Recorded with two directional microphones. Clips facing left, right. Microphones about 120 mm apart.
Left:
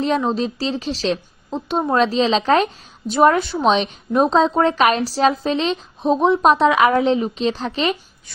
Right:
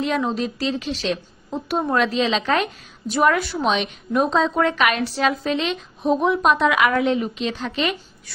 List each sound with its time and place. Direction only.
0.0 s a woman's voice: 30° left (ahead or behind)